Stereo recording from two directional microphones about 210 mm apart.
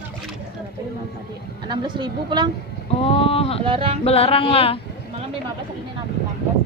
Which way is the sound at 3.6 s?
25° right (ahead or behind).